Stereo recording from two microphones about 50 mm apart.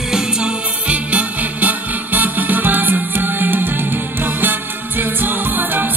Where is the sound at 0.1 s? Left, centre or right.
Right.